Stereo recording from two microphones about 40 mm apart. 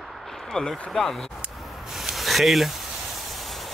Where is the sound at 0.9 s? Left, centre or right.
Centre.